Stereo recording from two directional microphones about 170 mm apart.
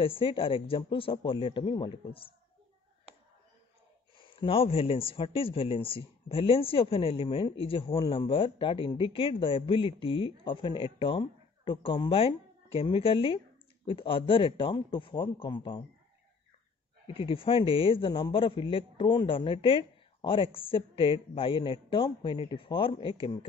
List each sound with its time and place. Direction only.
0.0 s a man's voice: 30° left (ahead or behind)
4.2 s a man's voice: 30° left (ahead or behind)
17.1 s a man's voice: 30° left (ahead or behind)